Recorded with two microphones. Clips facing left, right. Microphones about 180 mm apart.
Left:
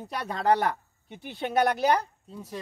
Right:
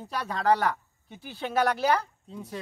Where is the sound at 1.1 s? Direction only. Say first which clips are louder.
Left 2 dB; 60° left (ahead or behind).